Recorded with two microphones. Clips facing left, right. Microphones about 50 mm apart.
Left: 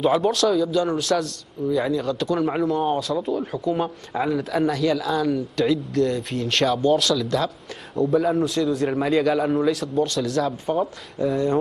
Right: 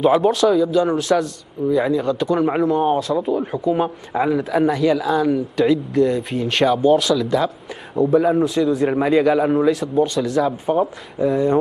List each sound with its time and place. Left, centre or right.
0.2 s a man's voice: centre
3.5 s a man's voice: centre